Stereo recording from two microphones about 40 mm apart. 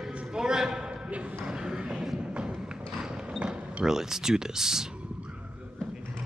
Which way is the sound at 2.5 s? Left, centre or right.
Centre.